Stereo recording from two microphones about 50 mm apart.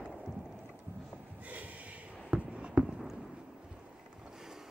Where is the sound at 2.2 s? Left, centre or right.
Right.